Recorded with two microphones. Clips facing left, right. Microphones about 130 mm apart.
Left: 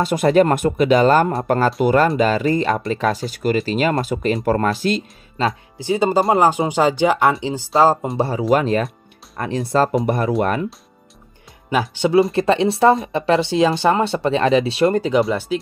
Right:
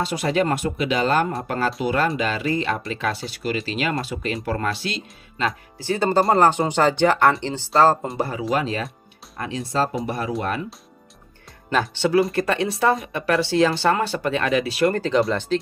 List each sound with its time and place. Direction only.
0.0 s speech: 50° left (ahead or behind)
5.8 s speech: 15° left (ahead or behind)
8.2 s speech: 30° left (ahead or behind)
8.5 s speech: 50° left (ahead or behind)
11.7 s speech: 10° left (ahead or behind)
12.2 s speech: 25° left (ahead or behind)
15.0 s speech: 10° left (ahead or behind)